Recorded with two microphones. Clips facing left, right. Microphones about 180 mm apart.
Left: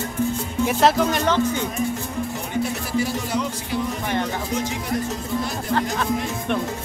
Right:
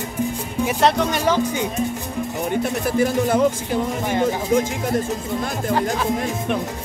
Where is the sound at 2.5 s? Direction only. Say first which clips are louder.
Right 2 dB; 55° right (ahead or behind).